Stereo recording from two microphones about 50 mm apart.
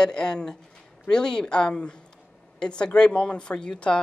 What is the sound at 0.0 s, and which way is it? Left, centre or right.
Speech, centre.